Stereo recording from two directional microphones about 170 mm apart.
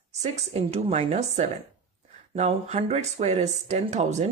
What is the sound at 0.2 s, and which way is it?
Speech, 40° right (ahead or behind).